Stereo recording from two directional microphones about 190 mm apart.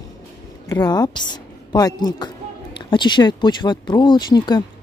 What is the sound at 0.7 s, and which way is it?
A woman's voice, 20° left (ahead or behind).